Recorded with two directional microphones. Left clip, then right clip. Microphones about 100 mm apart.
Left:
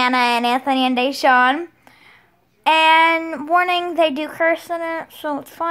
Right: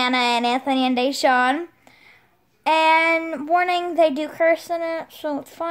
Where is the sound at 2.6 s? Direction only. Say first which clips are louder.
Left 4 dB; 30° right (ahead or behind).